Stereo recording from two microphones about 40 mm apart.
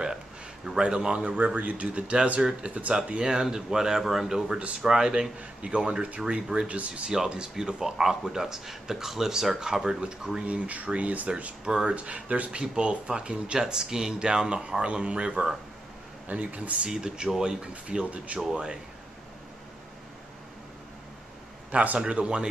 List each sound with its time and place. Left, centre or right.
0.8 s speech: right
1.2 s speech: right
3.2 s speech: centre; by 7.0 s right
7.1 s speech: centre
10.4 s speech: right
11.6 s speech: centre
11.9 s speech: right
12.7 s speech: right
13.6 s speech: centre
16.3 s speech: right
16.9 s speech: centre
18.1 s speech: right
18.5 s speech: right
21.7 s speech: right